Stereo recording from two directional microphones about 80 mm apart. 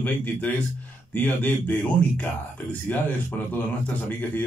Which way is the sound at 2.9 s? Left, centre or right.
Left.